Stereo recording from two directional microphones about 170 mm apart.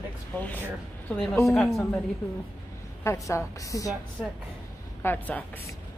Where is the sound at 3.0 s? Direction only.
15° left (ahead or behind).